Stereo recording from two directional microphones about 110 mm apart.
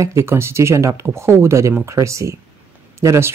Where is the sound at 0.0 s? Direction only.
25° right (ahead or behind).